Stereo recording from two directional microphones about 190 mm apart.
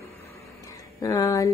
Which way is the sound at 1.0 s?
15° left (ahead or behind).